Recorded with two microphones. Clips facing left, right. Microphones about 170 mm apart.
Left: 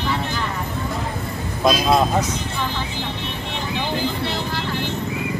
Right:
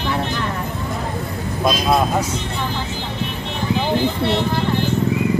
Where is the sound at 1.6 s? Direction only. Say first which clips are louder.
Left 1 dB; 5° right (ahead or behind).